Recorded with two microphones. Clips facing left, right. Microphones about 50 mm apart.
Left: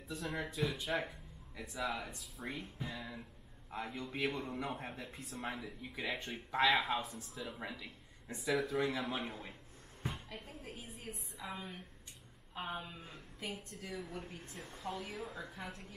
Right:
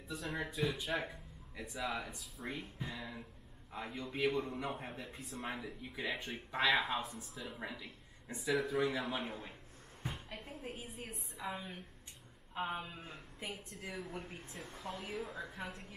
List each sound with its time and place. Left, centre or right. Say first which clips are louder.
0.1 s speech: even; centre
10.0 s a sound: left 1 dB; centre
11.5 s a woman's voice: right 1 dB; right